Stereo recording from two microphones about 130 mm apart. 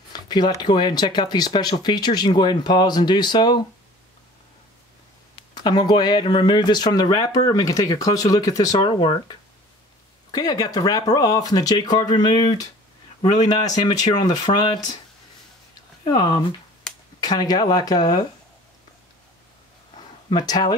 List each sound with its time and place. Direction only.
0.1 s a sound: 35° left (ahead or behind)
0.6 s speech: 35° left (ahead or behind)
5.3 s speech: 35° left (ahead or behind)
10.3 s speech: 30° left (ahead or behind)
16.1 s speech: 35° left (ahead or behind)
20.2 s speech: 35° left (ahead or behind)